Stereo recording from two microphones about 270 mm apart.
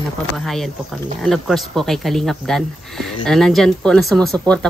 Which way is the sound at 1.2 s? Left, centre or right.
Centre.